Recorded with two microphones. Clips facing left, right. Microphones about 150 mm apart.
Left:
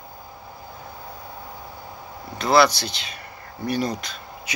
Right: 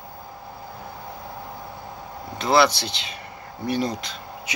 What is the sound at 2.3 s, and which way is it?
Speech, 20° right (ahead or behind).